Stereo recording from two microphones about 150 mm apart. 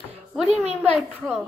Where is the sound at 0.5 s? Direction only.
45° right (ahead or behind).